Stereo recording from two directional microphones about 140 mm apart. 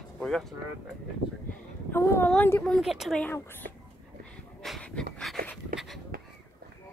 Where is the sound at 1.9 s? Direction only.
15° left (ahead or behind).